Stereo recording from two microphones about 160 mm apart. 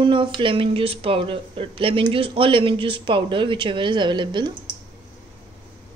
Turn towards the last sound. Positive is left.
turn(degrees=-30)  # may be behind; listen again after turning